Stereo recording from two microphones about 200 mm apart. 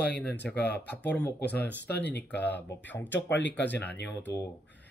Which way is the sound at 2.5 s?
60° left (ahead or behind).